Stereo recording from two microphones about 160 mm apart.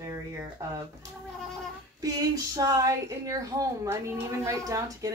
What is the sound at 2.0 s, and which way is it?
A woman's voice, 25° right (ahead or behind).